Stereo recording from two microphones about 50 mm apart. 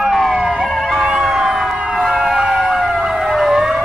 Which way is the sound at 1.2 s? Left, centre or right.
Centre.